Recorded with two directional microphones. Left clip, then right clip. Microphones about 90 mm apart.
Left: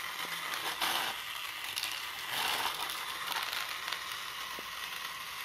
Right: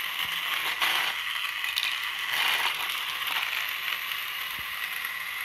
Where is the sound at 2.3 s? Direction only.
25° left (ahead or behind).